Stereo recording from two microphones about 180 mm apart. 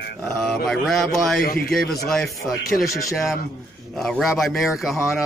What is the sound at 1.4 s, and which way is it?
Speech, 55° left (ahead or behind).